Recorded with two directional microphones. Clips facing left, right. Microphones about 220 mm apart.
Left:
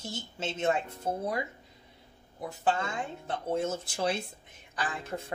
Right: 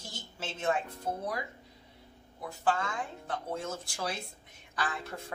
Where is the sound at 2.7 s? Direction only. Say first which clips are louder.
Left 1 dB; 25° left (ahead or behind).